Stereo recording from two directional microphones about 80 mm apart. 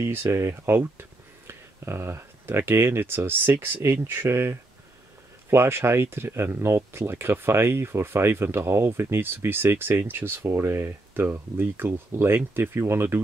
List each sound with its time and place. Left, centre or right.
0.0 s speech: right